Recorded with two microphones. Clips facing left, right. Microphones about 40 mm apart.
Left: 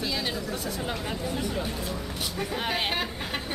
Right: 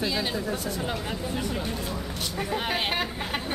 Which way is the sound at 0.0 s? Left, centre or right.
Centre.